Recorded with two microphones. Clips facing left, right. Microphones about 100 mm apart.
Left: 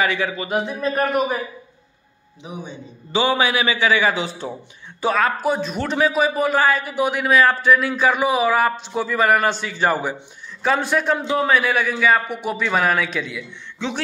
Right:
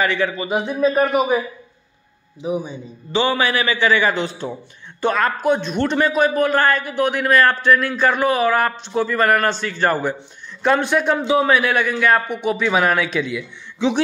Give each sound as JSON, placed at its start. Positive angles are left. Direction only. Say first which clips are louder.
{"t": 0.0, "sound": "a man's voice", "louder": "right 2 dB", "side_deg": 5}
{"t": 2.4, "sound": "a man's voice", "louder": "right 10 dB", "side_deg": -5}
{"t": 3.1, "sound": "a man's voice", "louder": "even", "side_deg": 15}
{"t": 13.7, "sound": "a sound", "louder": "right 8 dB", "side_deg": -15}